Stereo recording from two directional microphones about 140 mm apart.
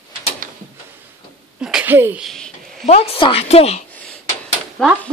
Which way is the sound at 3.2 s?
40° left (ahead or behind).